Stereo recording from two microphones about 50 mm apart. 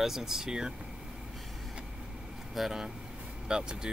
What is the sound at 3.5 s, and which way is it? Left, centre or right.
Speech, centre.